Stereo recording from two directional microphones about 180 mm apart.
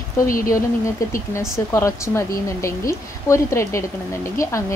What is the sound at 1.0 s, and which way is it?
Speech, 15° left (ahead or behind).